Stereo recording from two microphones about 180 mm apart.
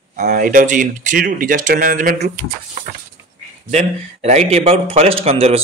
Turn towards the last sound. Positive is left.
turn(degrees=-35)  # may be behind; listen again after turning